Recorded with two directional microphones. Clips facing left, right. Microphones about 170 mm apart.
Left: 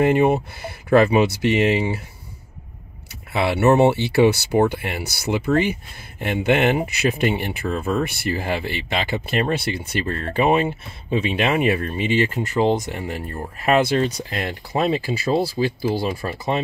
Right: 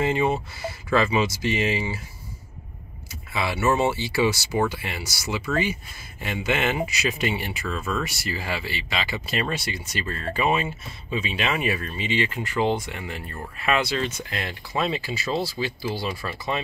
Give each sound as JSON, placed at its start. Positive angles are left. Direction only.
{"t": 0.0, "sound": "speech", "side_deg": 60}
{"t": 3.3, "sound": "speech", "side_deg": 65}